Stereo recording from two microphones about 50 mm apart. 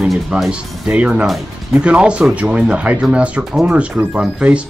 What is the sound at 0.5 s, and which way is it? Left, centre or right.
Speech, centre.